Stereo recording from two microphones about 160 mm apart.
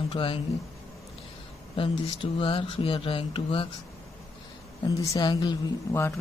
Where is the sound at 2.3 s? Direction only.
35° left (ahead or behind).